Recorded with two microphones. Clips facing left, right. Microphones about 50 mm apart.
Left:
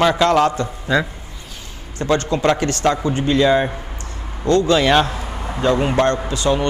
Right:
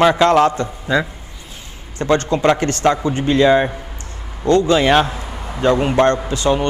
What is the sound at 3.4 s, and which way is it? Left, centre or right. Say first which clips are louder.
A man's voice: right 2 dB; centre.